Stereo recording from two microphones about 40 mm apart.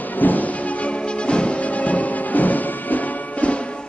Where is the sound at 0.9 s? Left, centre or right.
Left.